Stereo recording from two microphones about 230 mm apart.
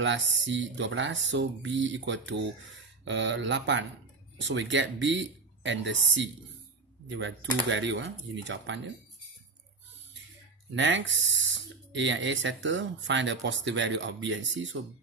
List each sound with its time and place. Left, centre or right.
0.0 s speech: right
10.7 s speech: right